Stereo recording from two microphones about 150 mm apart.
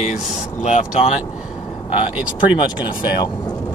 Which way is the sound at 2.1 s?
10° right (ahead or behind).